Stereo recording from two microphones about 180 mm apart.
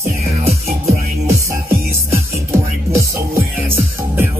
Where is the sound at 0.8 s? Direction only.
15° right (ahead or behind).